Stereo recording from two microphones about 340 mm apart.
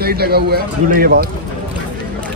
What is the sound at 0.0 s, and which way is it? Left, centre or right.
Speech, right.